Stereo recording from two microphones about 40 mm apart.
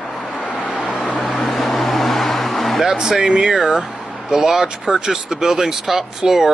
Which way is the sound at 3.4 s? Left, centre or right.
Centre.